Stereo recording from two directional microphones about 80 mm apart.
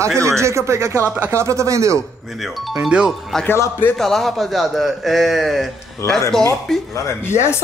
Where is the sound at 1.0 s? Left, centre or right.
Right.